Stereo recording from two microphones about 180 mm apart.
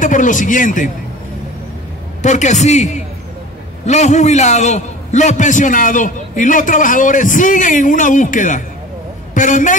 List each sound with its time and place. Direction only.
0.0 s a man's voice: 45° left (ahead or behind)
2.2 s a man's voice: 40° left (ahead or behind)